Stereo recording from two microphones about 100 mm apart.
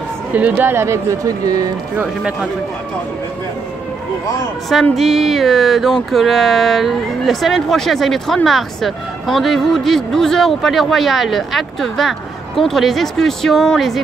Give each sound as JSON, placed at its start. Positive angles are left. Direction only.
{"t": 0.3, "sound": "speech", "side_deg": -15}
{"t": 2.0, "sound": "speech", "side_deg": -10}
{"t": 4.9, "sound": "speech", "side_deg": 0}